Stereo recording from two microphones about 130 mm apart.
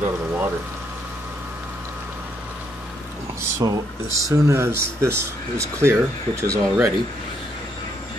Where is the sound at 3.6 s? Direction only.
30° right (ahead or behind).